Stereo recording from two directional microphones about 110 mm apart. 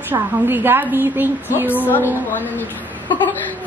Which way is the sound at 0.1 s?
20° right (ahead or behind).